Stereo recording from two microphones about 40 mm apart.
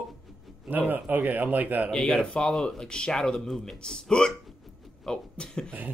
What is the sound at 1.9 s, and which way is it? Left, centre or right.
Speech, left.